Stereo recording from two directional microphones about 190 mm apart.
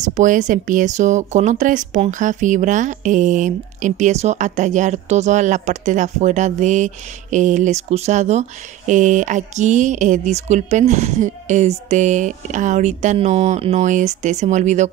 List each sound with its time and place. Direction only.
0.0 s speech: 40° right (ahead or behind)